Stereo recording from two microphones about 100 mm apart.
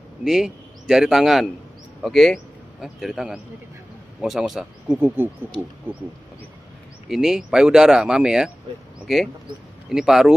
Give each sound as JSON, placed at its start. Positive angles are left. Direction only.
{"t": 0.2, "sound": "a man's voice", "side_deg": -5}
{"t": 4.9, "sound": "speech", "side_deg": -20}
{"t": 7.1, "sound": "speech", "side_deg": -5}